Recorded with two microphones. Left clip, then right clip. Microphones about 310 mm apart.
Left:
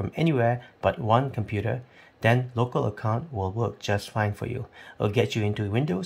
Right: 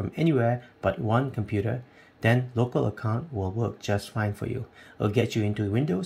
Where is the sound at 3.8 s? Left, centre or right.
Centre.